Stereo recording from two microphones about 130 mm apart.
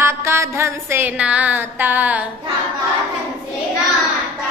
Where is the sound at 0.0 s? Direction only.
20° right (ahead or behind).